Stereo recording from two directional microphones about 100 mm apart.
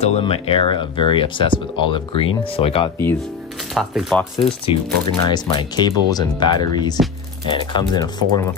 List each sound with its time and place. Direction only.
0.2 s speech: 60° left (ahead or behind)
3.7 s speech: centre (ahead or behind)
4.4 s speech: 55° left (ahead or behind)